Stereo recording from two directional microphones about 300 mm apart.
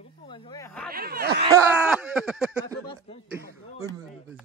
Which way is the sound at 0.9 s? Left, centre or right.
Right.